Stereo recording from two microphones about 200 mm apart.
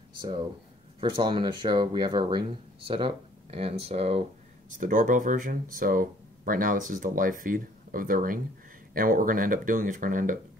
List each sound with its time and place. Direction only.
0.2 s speech: 25° right (ahead or behind); by 10.4 s 40° right (ahead or behind)